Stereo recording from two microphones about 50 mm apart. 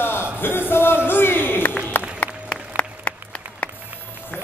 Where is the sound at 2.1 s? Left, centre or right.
Centre.